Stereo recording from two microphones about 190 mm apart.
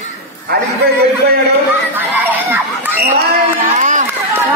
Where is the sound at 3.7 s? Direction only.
40° right (ahead or behind).